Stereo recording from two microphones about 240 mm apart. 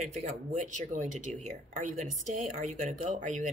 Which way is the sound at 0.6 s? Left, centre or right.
Right.